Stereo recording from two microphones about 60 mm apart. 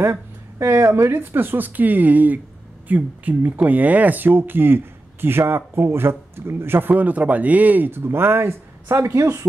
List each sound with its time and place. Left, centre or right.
0.0 s speech: right
6.9 s speech: right